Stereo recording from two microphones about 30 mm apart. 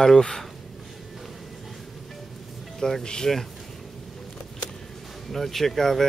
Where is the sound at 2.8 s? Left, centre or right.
Left.